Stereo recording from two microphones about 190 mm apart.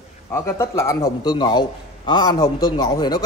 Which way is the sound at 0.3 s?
15° left (ahead or behind).